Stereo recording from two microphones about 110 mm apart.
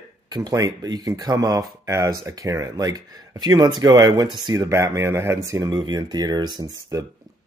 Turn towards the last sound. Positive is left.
turn(degrees=-35)  # may be behind; listen again after turning